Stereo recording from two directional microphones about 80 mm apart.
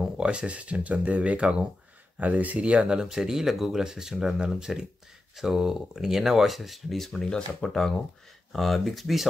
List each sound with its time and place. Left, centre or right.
0.0 s speech: centre